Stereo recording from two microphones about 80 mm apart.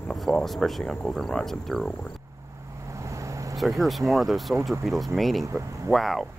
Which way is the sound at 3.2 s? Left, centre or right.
Right.